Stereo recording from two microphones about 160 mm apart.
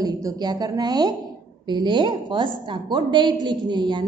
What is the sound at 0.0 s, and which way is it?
A woman's voice, 25° right (ahead or behind).